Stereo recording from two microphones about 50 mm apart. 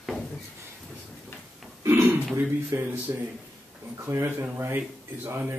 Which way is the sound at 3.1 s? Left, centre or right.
Right.